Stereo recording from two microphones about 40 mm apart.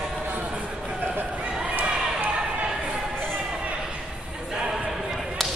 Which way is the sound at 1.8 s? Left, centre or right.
Right.